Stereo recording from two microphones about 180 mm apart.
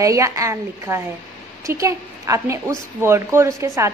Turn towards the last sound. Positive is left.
turn(degrees=-15)  # may be behind; listen again after turning